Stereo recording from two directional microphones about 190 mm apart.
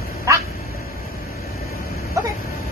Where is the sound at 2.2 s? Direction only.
15° right (ahead or behind).